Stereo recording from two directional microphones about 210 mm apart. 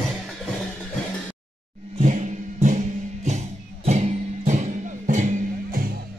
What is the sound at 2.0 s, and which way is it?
Music, 35° right (ahead or behind).